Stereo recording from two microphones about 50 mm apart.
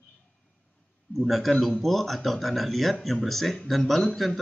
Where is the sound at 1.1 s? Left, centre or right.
Centre.